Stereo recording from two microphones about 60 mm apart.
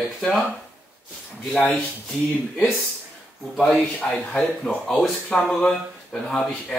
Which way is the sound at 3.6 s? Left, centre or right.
Centre.